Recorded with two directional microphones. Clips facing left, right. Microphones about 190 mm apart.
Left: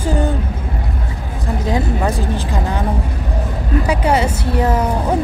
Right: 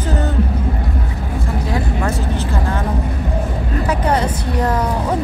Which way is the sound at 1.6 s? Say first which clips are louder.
Left 4 dB; 20° left (ahead or behind).